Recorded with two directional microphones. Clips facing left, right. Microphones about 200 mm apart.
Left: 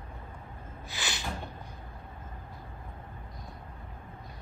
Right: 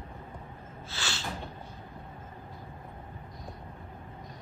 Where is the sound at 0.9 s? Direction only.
15° left (ahead or behind).